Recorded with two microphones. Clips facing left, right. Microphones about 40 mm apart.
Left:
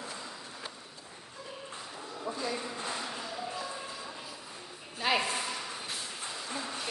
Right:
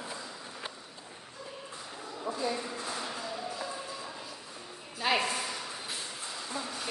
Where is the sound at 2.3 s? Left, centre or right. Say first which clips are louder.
Right 2 dB; centre.